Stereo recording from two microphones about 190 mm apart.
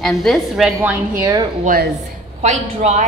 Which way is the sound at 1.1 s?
20° right (ahead or behind).